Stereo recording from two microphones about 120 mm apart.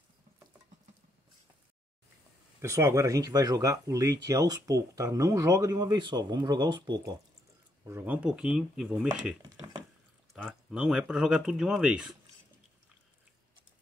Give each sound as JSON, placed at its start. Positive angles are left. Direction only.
{"t": 2.6, "sound": "speech", "side_deg": -25}
{"t": 8.0, "sound": "speech", "side_deg": -10}